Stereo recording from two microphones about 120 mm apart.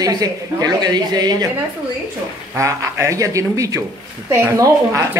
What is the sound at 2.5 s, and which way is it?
Speech, 25° right (ahead or behind).